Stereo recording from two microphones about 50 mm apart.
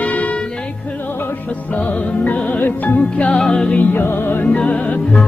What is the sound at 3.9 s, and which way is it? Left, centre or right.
Music, left.